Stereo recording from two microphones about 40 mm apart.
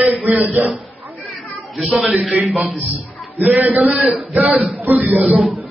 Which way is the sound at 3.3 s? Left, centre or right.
Right.